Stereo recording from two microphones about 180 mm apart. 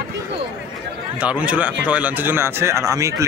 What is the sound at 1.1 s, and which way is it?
Speech, 10° right (ahead or behind).